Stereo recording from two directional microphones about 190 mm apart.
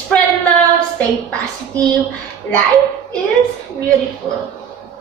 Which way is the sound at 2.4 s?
5° left (ahead or behind).